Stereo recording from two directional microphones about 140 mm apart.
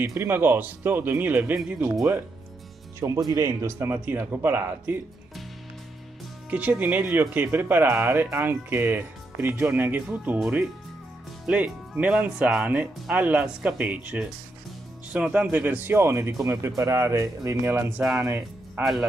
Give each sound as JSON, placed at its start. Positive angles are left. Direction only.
{"t": 0.0, "sound": "speech", "side_deg": -15}
{"t": 3.3, "sound": "speech", "side_deg": -20}
{"t": 6.5, "sound": "speech", "side_deg": -10}